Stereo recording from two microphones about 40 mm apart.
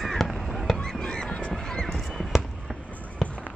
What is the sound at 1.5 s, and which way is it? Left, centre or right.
Clip-clop, centre.